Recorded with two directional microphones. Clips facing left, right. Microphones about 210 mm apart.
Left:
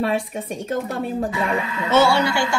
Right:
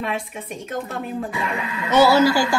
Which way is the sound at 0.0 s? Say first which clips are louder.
Left 5 dB; 35° left (ahead or behind).